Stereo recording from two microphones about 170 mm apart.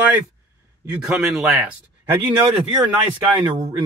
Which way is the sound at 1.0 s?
5° right (ahead or behind).